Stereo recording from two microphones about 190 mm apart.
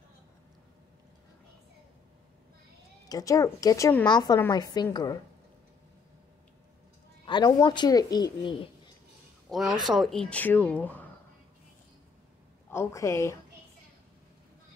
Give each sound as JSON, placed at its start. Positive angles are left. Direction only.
{"t": 3.1, "sound": "a woman's voice", "side_deg": 20}
{"t": 7.2, "sound": "a woman's voice", "side_deg": 20}
{"t": 9.5, "sound": "speech", "side_deg": 0}
{"t": 12.7, "sound": "speech", "side_deg": 15}